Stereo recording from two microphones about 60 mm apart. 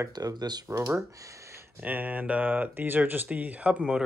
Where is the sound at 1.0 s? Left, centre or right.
Right.